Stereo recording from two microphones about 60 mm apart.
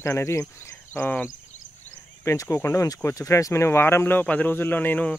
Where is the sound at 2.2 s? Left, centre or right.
Left.